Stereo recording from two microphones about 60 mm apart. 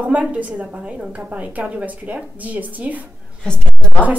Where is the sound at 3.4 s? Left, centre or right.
Centre.